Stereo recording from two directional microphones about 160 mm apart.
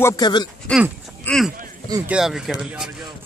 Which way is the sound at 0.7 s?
10° left (ahead or behind).